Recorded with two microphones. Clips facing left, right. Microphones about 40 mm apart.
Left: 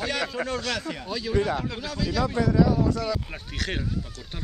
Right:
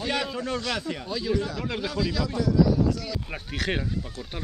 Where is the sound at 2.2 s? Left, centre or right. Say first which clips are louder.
Left 2 dB; left.